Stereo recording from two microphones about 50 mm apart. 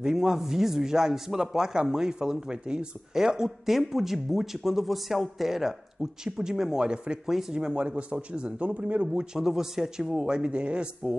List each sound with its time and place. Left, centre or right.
0.0 s a man's voice: centre; by 9.0 s right
9.0 s a man's voice: centre